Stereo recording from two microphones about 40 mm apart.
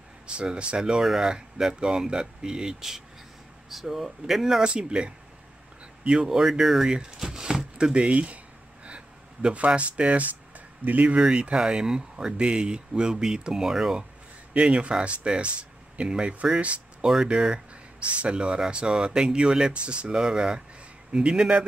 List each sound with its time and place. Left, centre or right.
0.3 s speech: right
3.7 s speech: centre
4.6 s speech: right
6.2 s speech: centre
6.9 s a sound: centre
7.7 s speech: right
8.8 s a sound: right
10.9 s speech: right
11.1 s speech: right
14.5 s speech: right
17.0 s speech: centre